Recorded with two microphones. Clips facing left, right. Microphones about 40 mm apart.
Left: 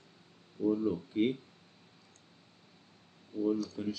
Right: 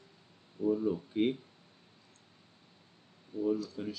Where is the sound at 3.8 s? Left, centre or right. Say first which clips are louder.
Left 2 dB; centre.